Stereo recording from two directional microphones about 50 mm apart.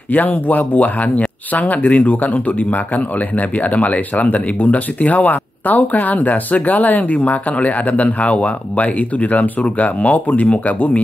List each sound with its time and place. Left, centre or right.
0.1 s speech: left